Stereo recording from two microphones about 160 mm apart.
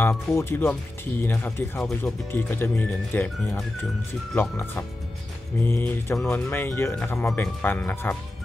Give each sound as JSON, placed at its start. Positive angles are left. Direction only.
{"t": 0.0, "sound": "speech", "side_deg": 15}